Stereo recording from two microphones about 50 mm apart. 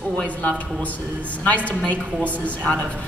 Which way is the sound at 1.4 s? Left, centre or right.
Left.